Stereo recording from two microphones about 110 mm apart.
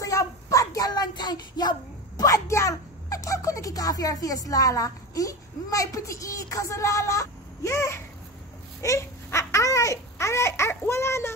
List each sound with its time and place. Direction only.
0.0 s child singing: 30° left (ahead or behind)
8.8 s babbling: 30° left (ahead or behind)